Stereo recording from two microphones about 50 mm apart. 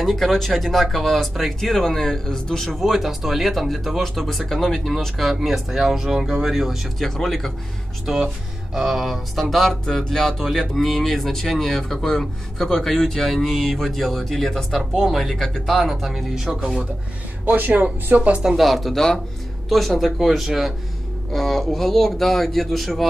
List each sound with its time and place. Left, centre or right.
0.1 s speech: centre
2.8 s speech: centre
8.1 s speech: centre
17.5 s speech: right
18.4 s speech: centre
18.7 s speech: centre